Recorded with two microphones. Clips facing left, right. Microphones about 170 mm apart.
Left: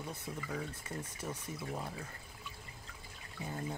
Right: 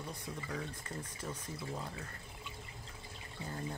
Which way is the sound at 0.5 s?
10° left (ahead or behind).